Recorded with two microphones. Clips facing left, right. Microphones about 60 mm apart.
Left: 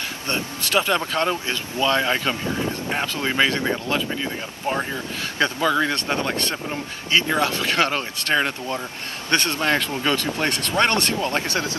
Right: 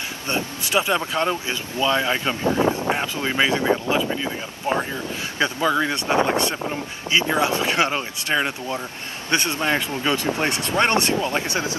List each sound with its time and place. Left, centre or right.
0.3 s speech: centre
3.3 s speech: centre
3.8 s speech: right
5.4 s speech: centre